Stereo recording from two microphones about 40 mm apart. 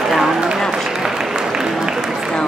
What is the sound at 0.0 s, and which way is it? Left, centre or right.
Run, centre.